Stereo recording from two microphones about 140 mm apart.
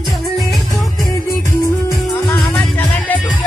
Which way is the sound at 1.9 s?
25° left (ahead or behind).